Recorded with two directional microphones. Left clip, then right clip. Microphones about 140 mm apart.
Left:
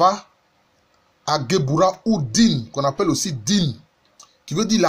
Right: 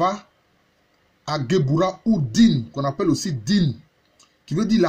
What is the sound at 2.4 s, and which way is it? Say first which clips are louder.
Speech: left 2 dB; 5° right (ahead or behind).